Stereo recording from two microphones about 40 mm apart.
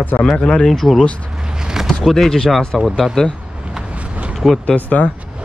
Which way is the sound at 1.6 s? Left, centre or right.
Centre.